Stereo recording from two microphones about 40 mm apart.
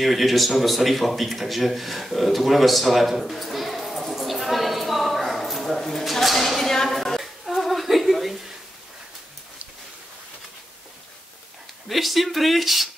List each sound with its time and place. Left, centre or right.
0.0 s speech: centre
4.1 s a sound: centre
11.9 s speech: centre